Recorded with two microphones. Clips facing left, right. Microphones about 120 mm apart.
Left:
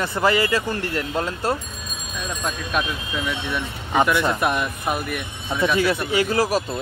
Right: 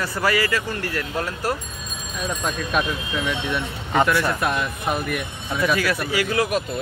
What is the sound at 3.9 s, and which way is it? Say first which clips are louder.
Speech: left 1 dB; 15° left (ahead or behind).